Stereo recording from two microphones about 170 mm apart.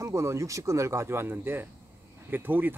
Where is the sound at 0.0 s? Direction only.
15° right (ahead or behind).